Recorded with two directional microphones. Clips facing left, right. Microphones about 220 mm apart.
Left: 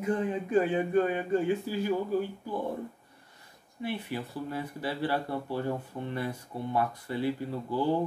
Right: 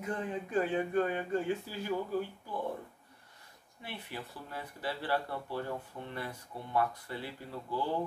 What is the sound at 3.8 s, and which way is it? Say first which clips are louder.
Speech: left 10 dB; 10° left (ahead or behind).